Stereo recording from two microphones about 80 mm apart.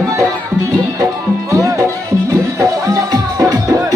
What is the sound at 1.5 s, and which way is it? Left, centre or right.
Music, right.